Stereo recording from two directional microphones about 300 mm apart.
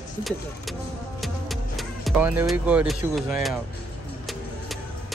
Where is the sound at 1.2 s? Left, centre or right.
Centre.